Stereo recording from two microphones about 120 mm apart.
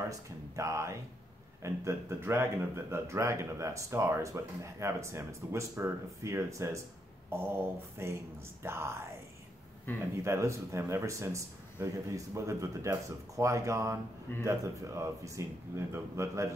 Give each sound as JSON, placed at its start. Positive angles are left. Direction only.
{"t": 0.1, "sound": "speech", "side_deg": -25}
{"t": 9.9, "sound": "a man's voice", "side_deg": 15}
{"t": 10.2, "sound": "speech", "side_deg": -25}